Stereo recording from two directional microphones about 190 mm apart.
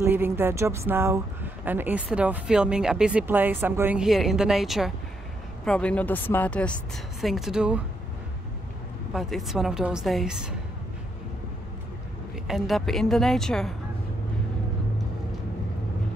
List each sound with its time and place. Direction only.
0.0 s a woman's voice: 10° right (ahead or behind)
9.1 s a woman's voice: centre (ahead or behind)
12.4 s a woman's voice: centre (ahead or behind)